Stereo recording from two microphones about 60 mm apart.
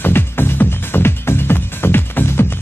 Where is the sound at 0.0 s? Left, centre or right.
Left.